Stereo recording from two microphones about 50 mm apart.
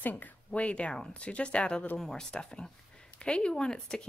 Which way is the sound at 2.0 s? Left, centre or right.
Centre.